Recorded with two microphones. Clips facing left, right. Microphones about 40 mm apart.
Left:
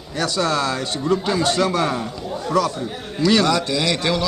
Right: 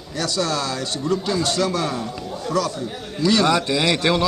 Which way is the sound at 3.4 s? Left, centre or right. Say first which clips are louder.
Right 1 dB; right.